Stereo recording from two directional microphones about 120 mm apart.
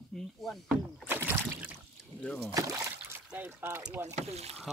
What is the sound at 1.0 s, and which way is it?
Boat, 15° right (ahead or behind).